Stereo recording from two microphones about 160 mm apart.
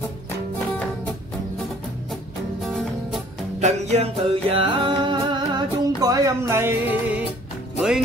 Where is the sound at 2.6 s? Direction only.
Centre (ahead or behind).